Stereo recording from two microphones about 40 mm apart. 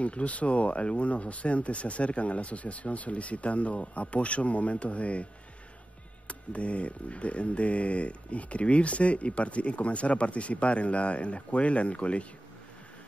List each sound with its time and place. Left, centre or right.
0.0 s speech: left
6.2 s speech: left